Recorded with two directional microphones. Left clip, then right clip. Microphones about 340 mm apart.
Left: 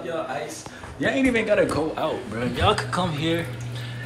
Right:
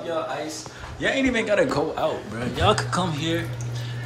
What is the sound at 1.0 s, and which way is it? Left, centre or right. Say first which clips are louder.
Speech: left 1 dB; centre.